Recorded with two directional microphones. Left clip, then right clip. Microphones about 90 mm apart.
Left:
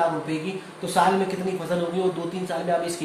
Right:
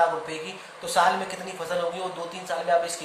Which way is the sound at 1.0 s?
25° right (ahead or behind).